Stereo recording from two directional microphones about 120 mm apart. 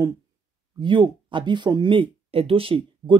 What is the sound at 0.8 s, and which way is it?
Speech, 40° right (ahead or behind).